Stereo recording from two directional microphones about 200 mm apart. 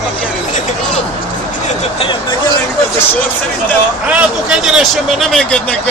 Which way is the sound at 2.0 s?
25° left (ahead or behind).